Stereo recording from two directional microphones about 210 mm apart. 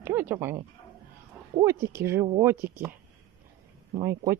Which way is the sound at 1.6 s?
15° right (ahead or behind).